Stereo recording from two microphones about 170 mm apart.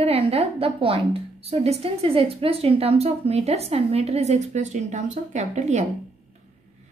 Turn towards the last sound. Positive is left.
turn(degrees=-45)  # may be behind; listen again after turning